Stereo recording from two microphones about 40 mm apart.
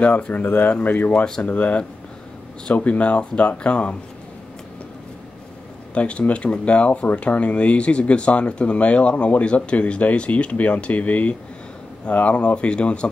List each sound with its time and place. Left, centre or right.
0.0 s speech: left
0.3 s speech: left
5.9 s speech: left